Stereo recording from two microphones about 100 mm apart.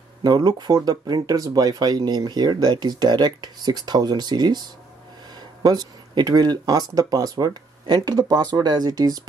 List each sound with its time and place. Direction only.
0.2 s speech: 40° right (ahead or behind)